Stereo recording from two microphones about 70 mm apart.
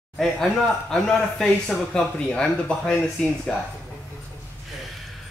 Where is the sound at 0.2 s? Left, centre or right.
Centre.